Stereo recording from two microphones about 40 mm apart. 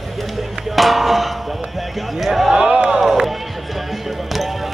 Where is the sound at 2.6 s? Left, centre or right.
Right.